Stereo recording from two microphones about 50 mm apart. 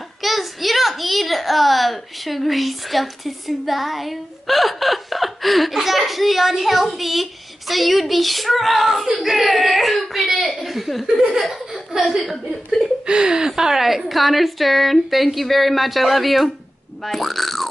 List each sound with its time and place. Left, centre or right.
0.2 s a child's voice: centre
13.0 s a woman's voice: centre